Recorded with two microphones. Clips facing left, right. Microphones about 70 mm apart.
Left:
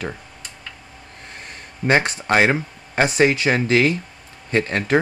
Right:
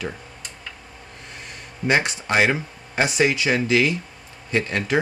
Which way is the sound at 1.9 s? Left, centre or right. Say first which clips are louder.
Left 3 dB; left.